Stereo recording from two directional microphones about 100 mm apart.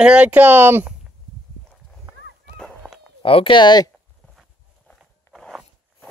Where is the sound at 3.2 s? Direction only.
60° left (ahead or behind).